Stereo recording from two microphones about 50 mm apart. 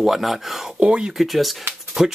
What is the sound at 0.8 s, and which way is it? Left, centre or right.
Speech, centre.